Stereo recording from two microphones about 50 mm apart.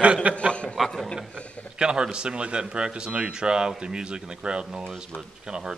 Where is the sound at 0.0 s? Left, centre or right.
Right.